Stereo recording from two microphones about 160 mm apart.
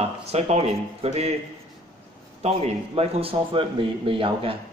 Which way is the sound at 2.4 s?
40° right (ahead or behind).